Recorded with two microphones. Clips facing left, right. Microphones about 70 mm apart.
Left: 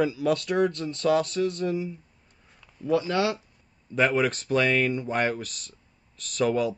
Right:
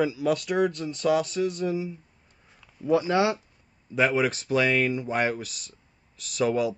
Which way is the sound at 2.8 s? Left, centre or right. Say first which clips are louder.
Right 2 dB; right.